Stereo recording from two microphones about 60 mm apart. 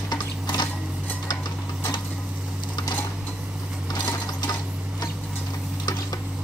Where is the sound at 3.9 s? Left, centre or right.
Left.